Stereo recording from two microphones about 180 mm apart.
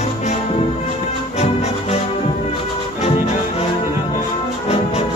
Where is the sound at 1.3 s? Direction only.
35° left (ahead or behind).